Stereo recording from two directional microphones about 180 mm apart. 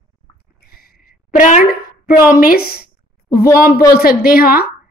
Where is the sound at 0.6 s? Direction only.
55° left (ahead or behind).